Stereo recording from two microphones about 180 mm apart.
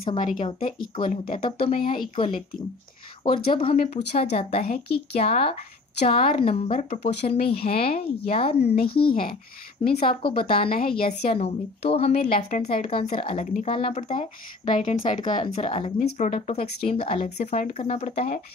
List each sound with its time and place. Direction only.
0.0 s speech: 30° left (ahead or behind)
4.6 s a woman's voice: 55° left (ahead or behind)
4.9 s speech: 35° left (ahead or behind)